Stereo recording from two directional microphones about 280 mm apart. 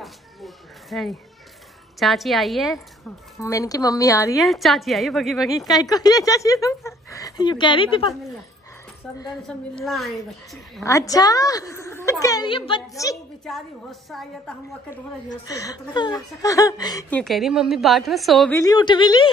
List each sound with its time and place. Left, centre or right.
0.0 s a sound: centre
2.0 s a woman's voice: centre
3.3 s a woman's voice: centre
4.4 s a woman's voice: centre
5.7 s a woman's voice: centre
9.5 s a woman's voice: centre
10.8 s a woman's voice: centre
13.5 s a woman's voice: centre
15.4 s a woman's voice: centre
17.2 s a woman's voice: centre